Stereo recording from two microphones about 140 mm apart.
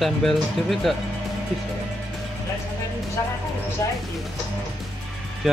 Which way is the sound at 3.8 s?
20° left (ahead or behind).